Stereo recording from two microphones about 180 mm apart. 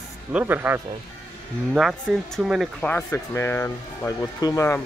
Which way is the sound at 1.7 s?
Centre (ahead or behind).